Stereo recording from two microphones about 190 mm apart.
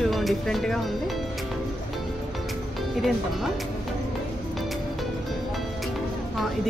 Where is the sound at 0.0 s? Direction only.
Centre (ahead or behind).